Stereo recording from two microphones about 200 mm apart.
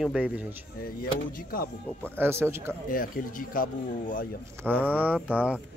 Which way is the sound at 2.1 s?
10° right (ahead or behind).